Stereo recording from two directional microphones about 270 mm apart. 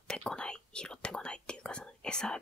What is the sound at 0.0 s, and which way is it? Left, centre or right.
Whispering, centre.